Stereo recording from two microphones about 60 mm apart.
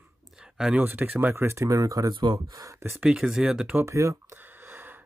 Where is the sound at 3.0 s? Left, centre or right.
Centre.